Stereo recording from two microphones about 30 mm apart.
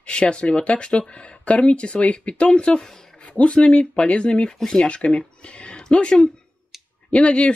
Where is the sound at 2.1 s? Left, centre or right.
Left.